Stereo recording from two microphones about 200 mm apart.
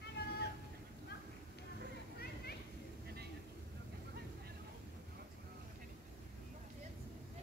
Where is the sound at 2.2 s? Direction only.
50° left (ahead or behind).